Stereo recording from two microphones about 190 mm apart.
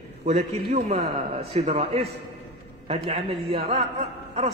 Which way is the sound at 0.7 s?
35° right (ahead or behind).